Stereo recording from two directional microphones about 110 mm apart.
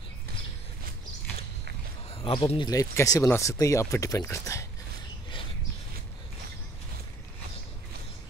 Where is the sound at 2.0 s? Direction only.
65° left (ahead or behind).